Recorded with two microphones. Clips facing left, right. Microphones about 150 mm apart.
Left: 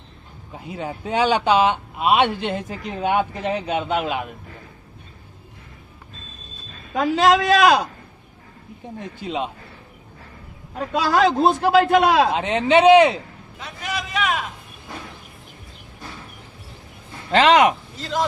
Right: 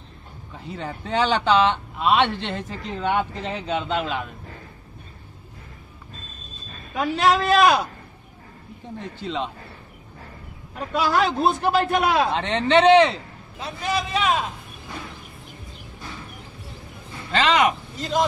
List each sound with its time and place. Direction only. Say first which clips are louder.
0.7 s speech: left 2 dB; 10° left (ahead or behind)
7.2 s a man's voice: left 2 dB; 90° left
9.2 s speech: left 2 dB; 15° left (ahead or behind)
11.1 s a man's voice: left 4 dB; 90° left
12.4 s speech: left 2 dB; 10° left (ahead or behind)
13.6 s a man's voice: right 4 dB; 30° right (ahead or behind)
17.3 s speech: left 5 dB; 65° left (ahead or behind)
17.9 s speech: right 2 dB; 15° right (ahead or behind)